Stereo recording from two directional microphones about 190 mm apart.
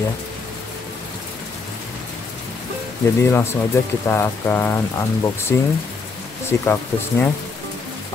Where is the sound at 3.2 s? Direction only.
15° left (ahead or behind).